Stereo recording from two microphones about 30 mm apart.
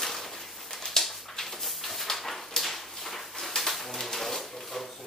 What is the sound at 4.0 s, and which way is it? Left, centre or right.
Pigeon, centre.